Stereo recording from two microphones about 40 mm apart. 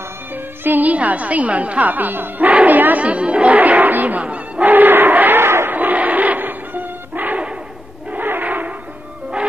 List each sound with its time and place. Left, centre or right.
0.3 s a woman's voice: right
3.5 s cattle: right
4.2 s speech: right
4.6 s a sound: right
5.4 s battle cry: right
5.7 s music: right
8.2 s a sound: right